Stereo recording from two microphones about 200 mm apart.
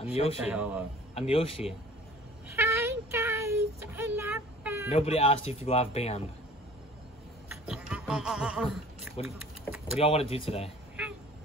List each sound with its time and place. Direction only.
0.0 s speech: 30° left (ahead or behind)
0.4 s a man's voice: 5° right (ahead or behind)
1.1 s a man's voice: 30° left (ahead or behind)
2.4 s a sound: 15° right (ahead or behind)
4.9 s speech: 30° left (ahead or behind)
7.6 s a sound: 5° right (ahead or behind)
9.9 s a man's voice: 30° left (ahead or behind)